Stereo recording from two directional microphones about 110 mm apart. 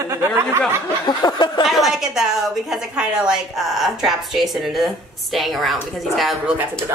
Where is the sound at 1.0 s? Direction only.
40° left (ahead or behind).